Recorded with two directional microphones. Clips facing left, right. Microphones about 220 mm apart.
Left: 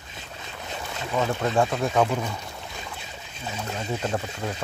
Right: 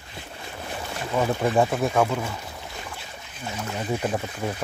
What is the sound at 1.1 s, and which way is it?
Speech, 15° right (ahead or behind).